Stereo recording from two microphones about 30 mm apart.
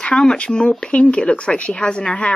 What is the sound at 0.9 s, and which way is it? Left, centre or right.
Speech, left.